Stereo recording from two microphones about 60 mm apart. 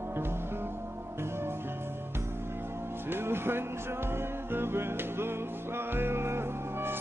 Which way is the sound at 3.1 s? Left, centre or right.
Right.